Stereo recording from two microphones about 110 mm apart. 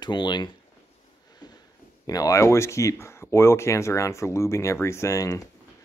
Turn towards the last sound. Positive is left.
turn(degrees=30)  # may be behind; listen again after turning